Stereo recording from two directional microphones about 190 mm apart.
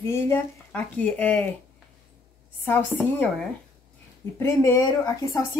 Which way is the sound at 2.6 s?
10° left (ahead or behind).